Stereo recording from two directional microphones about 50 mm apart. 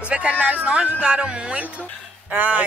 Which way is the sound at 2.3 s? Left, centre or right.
Right.